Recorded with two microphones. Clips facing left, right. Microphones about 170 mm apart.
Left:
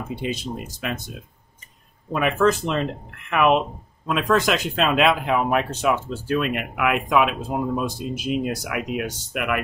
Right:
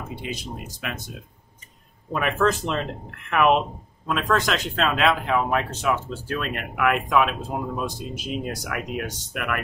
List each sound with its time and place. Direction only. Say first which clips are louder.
0.2 s speech: left 5 dB; 25° left (ahead or behind)
2.1 s speech: left 3 dB; 5° left (ahead or behind)